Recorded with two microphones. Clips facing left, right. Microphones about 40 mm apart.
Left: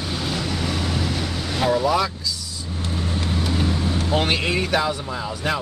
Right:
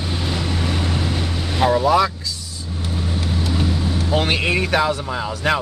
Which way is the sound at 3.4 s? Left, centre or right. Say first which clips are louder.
Right 1 dB; centre.